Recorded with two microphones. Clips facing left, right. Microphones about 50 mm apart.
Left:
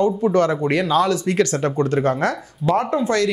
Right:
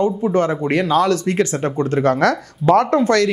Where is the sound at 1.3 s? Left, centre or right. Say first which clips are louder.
Even; right.